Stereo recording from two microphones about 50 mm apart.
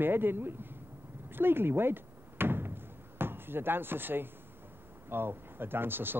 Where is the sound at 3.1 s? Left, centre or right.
Right.